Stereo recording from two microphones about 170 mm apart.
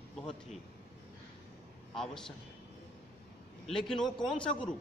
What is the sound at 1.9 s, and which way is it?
Speech, 5° left (ahead or behind).